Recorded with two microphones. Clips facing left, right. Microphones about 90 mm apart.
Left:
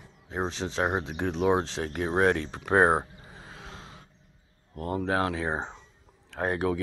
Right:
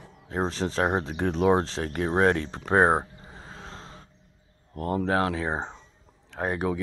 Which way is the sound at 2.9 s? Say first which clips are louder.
Right 1 dB; 30° right (ahead or behind).